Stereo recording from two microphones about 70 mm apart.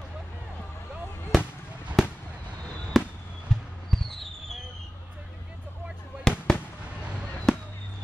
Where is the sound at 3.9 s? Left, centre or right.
Centre.